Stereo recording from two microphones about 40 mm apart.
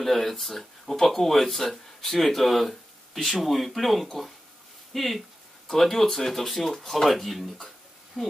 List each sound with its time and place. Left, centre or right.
0.0 s speech: centre